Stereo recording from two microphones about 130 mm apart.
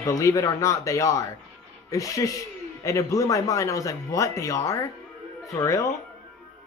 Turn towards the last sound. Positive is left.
turn(degrees=25)  # may be behind; listen again after turning